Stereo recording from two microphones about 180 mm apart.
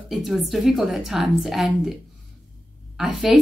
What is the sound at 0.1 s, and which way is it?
A woman's voice, centre (ahead or behind).